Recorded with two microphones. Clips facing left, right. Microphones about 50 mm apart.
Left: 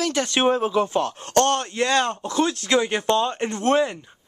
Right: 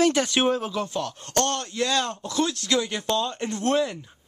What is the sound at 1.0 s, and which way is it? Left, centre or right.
Speech, left.